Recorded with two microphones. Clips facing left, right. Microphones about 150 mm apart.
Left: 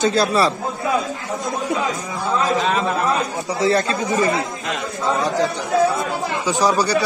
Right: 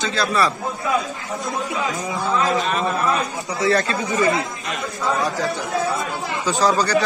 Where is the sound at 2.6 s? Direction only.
90° left.